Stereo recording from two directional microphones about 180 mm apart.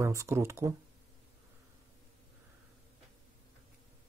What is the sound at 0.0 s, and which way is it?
Speech, 15° right (ahead or behind).